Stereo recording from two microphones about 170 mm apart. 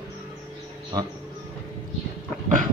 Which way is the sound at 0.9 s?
25° right (ahead or behind).